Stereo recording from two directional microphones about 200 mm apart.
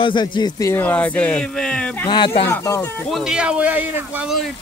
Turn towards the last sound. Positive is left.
turn(degrees=-5)  # may be behind; listen again after turning